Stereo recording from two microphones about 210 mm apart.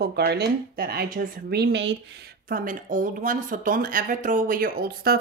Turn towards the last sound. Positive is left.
turn(degrees=-45)  # may be behind; listen again after turning